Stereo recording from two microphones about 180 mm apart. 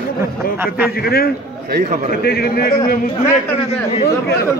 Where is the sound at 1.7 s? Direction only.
60° right (ahead or behind).